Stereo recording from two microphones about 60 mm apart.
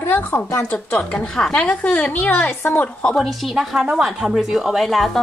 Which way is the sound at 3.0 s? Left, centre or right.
Centre.